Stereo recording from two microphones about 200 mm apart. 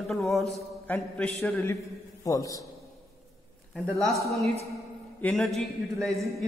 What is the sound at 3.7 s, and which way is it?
Speech, centre (ahead or behind).